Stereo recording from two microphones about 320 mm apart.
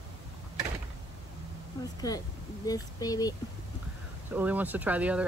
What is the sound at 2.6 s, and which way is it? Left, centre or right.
Speech, centre.